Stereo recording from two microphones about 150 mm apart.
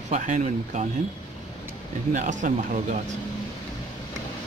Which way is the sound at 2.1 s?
55° right (ahead or behind).